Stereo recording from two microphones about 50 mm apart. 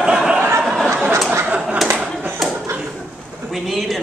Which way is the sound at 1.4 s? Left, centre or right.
Right.